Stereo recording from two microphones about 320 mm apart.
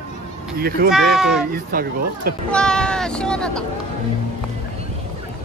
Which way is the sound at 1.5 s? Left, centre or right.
Right.